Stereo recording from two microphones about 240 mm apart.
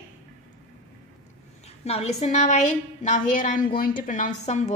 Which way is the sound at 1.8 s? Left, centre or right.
Left.